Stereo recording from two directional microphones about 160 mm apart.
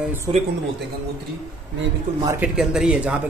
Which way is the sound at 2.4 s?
5° right (ahead or behind).